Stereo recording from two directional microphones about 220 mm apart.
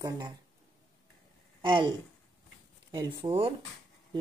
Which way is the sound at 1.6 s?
20° right (ahead or behind).